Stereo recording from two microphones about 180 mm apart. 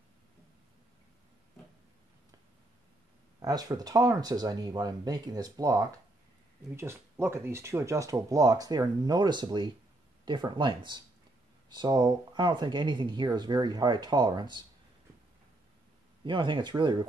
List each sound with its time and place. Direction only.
3.3 s speech: 20° right (ahead or behind)
16.3 s speech: 25° right (ahead or behind)